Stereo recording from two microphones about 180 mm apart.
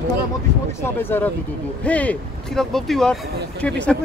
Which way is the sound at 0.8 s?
10° left (ahead or behind).